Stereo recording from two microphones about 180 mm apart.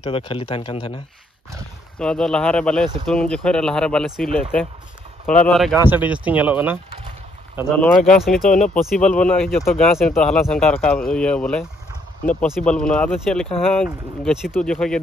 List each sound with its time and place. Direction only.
0.0 s speech: 30° left (ahead or behind)
2.0 s speech: 5° left (ahead or behind)
5.9 s speech: 10° right (ahead or behind)
7.7 s speech: 5° left (ahead or behind)